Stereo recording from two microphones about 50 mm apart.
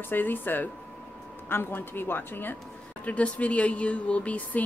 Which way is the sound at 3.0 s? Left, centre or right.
Left.